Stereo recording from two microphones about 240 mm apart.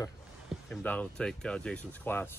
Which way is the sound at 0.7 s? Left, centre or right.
Centre.